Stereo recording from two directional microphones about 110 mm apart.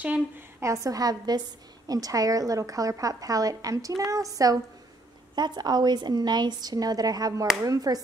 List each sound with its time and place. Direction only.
0.6 s a woman's voice: 30° right (ahead or behind)